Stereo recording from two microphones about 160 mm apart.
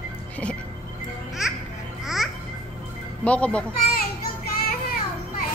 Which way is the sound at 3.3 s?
10° left (ahead or behind).